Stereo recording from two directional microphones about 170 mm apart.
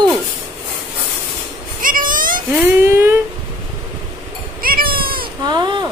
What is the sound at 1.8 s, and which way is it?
Cat, 55° right (ahead or behind).